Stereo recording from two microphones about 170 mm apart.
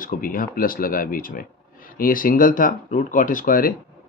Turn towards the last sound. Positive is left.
turn(degrees=55)  # may be behind; listen again after turning